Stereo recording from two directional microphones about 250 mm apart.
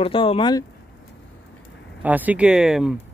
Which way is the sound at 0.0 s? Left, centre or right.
Left.